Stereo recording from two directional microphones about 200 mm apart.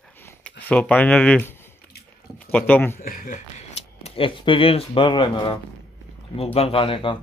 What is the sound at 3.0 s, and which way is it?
Speech, 45° left (ahead or behind).